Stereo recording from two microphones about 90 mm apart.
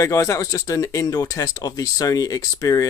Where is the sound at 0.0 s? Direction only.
35° left (ahead or behind).